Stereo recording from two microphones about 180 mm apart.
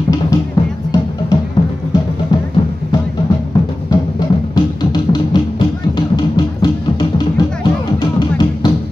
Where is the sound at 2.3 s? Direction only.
25° left (ahead or behind).